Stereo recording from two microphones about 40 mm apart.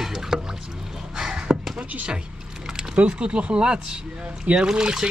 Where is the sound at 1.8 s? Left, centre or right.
Right.